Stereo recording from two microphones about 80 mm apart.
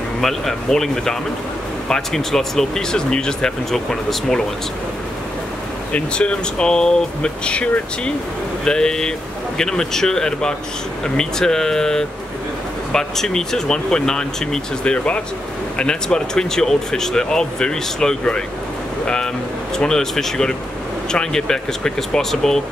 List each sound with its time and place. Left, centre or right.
0.2 s speech: centre
5.9 s speech: centre
19.8 s speech: centre